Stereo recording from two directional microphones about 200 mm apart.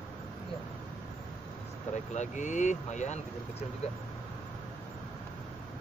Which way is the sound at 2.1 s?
35° left (ahead or behind).